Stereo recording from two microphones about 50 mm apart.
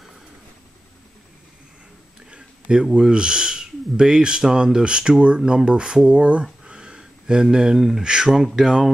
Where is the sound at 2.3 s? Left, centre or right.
Centre.